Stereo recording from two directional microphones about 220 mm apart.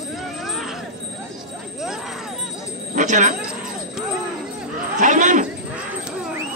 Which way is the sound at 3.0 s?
35° right (ahead or behind).